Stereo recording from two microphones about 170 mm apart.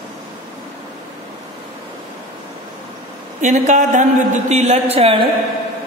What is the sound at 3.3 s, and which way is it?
A woman's voice, 45° right (ahead or behind).